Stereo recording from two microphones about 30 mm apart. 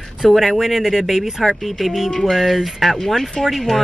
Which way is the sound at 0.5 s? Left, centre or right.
Centre.